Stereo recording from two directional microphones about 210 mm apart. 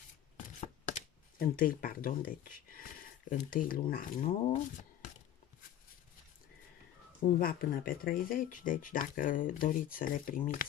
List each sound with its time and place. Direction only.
0.6 s speech: 35° left (ahead or behind)
7.3 s speech: 45° left (ahead or behind)